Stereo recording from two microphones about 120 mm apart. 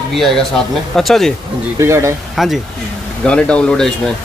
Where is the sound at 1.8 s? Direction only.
20° right (ahead or behind).